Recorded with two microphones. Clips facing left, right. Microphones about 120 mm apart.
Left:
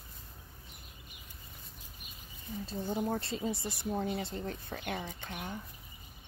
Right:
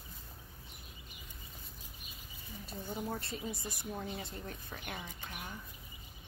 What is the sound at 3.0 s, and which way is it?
Speech, 30° left (ahead or behind).